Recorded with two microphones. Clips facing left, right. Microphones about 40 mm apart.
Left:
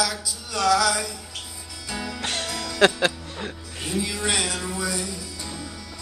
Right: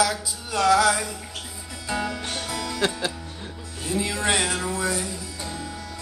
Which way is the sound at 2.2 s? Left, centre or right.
Left.